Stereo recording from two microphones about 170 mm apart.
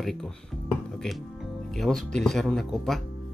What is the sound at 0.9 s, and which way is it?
Speech, centre (ahead or behind).